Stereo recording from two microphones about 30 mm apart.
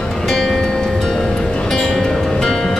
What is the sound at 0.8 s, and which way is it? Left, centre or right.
Music, centre.